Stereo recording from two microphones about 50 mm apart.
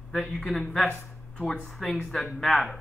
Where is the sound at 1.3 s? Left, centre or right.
Centre.